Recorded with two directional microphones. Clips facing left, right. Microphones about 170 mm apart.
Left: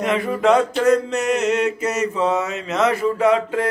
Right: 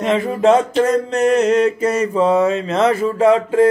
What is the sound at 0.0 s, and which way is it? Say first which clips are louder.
Mantra: right 4 dB; 25° right (ahead or behind).